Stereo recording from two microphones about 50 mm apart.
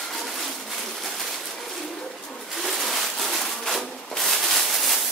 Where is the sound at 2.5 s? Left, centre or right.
Centre.